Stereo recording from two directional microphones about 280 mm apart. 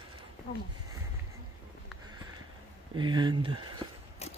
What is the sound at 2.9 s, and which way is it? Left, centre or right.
Speech, centre.